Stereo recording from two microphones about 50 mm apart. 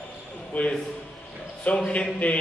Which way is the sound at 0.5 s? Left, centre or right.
Left.